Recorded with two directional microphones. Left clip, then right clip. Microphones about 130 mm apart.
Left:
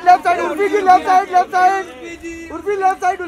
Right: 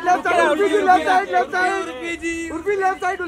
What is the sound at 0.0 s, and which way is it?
Chatter, 30° left (ahead or behind).